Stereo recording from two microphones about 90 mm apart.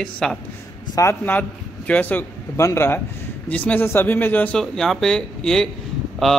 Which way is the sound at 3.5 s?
15° left (ahead or behind).